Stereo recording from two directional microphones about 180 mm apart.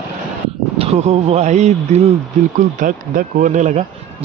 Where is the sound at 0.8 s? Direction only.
35° right (ahead or behind).